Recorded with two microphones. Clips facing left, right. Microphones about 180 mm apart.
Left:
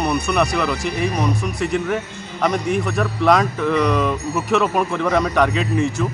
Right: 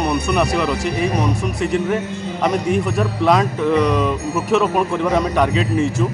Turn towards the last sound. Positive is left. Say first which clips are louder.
# right 1 dB
turn(degrees=-5)  # may be behind; listen again after turning